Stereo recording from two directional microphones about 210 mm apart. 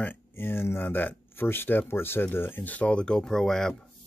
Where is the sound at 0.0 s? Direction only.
10° left (ahead or behind).